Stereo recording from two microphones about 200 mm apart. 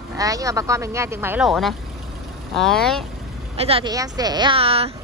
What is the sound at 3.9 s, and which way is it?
Speech, 20° right (ahead or behind).